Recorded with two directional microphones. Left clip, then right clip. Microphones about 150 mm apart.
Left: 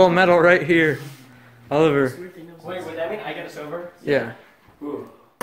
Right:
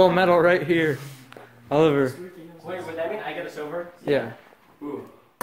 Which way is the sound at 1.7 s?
10° right (ahead or behind).